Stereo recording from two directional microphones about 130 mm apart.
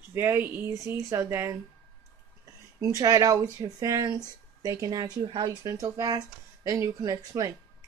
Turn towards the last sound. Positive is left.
turn(degrees=-30)  # may be behind; listen again after turning